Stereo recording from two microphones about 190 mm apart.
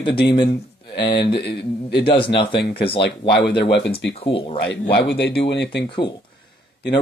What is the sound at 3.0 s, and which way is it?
Speech, 60° left (ahead or behind).